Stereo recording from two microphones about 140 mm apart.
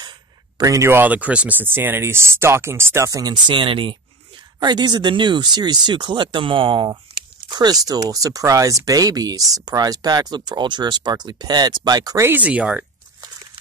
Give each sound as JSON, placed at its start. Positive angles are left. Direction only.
{"t": 0.6, "sound": "speech", "side_deg": -25}
{"t": 12.3, "sound": "speech", "side_deg": -10}